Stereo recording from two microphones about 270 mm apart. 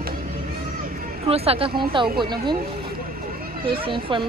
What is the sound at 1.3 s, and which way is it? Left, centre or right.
Speech, right.